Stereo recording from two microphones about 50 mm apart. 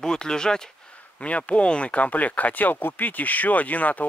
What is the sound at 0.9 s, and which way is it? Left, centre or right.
Speech, left.